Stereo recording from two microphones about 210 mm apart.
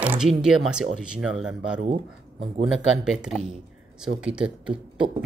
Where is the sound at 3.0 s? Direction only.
5° right (ahead or behind).